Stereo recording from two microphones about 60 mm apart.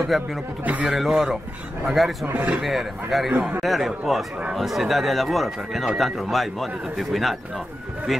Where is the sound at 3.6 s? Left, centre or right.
Centre.